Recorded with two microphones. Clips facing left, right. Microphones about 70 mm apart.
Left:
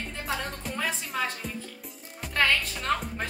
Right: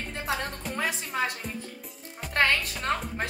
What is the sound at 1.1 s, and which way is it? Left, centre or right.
Music, right.